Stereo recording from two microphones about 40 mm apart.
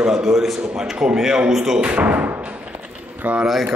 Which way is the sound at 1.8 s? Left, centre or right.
Right.